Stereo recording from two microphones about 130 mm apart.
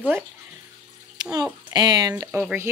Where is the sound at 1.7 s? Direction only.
30° right (ahead or behind).